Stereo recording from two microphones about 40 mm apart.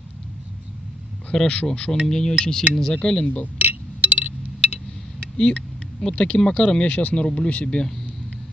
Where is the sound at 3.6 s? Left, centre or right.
Right.